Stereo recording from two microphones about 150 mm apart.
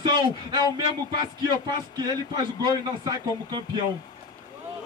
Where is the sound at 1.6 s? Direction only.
30° right (ahead or behind).